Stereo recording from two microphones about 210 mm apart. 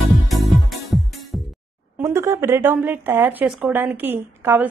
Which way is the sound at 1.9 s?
10° right (ahead or behind).